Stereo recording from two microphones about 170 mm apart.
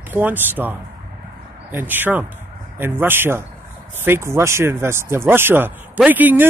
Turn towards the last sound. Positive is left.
turn(degrees=-10)  # may be behind; listen again after turning